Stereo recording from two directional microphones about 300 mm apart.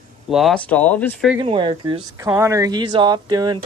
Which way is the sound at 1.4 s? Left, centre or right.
Centre.